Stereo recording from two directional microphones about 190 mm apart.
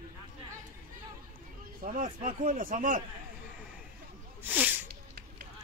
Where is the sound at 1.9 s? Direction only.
45° right (ahead or behind).